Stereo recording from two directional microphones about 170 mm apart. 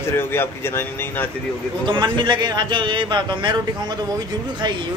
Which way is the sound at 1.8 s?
25° right (ahead or behind).